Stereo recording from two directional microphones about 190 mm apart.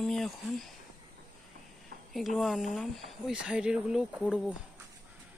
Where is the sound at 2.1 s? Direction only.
Centre (ahead or behind).